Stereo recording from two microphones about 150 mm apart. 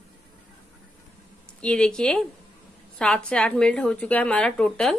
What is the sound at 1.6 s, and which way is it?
Speech, 5° left (ahead or behind).